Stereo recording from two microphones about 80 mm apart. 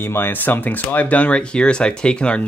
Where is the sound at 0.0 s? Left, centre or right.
Left.